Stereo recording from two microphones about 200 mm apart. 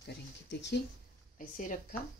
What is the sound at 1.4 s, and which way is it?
Speech, 40° left (ahead or behind).